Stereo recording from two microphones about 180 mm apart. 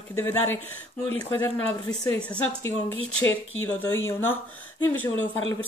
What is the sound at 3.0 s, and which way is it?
Speech, 90° left.